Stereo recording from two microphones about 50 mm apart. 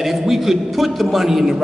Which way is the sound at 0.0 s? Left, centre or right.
Centre.